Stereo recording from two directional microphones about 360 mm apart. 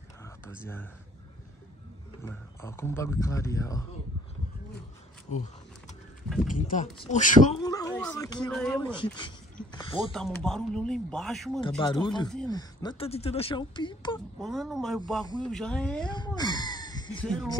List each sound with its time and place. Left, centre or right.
0.6 s speech: centre
2.2 s speech: centre
6.2 s a sound: centre
6.6 s speech: centre
7.6 s speech: centre
8.9 s speech: centre
10.1 s speech: centre
11.8 s speech: centre
14.4 s speech: centre